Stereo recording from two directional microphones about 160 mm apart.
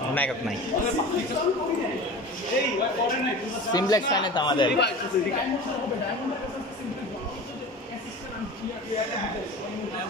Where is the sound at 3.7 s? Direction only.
25° left (ahead or behind).